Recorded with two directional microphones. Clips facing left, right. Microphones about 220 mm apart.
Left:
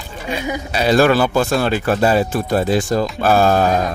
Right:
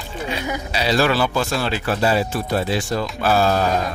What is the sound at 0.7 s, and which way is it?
Speech, 50° left (ahead or behind).